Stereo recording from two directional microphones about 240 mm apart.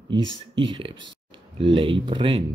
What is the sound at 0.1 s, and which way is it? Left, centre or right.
Speech, right.